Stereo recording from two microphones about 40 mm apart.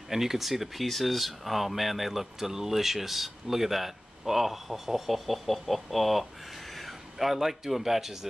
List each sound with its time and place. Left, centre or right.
0.1 s speech: centre